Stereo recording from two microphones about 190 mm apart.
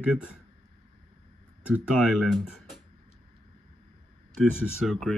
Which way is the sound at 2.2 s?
5° right (ahead or behind).